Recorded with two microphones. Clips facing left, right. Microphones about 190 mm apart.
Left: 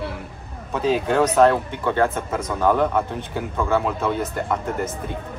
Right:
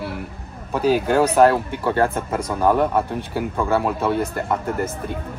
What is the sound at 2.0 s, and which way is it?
Speech, 35° right (ahead or behind).